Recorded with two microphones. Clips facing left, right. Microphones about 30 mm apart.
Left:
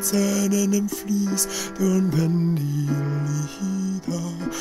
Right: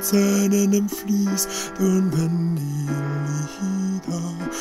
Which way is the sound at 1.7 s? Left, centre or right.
Centre.